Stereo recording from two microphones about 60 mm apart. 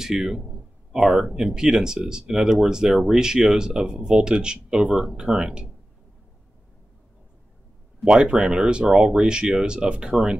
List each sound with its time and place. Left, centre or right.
0.0 s a man's voice: centre
8.1 s speech: centre